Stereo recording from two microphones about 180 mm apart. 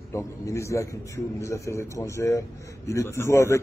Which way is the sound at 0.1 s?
15° left (ahead or behind).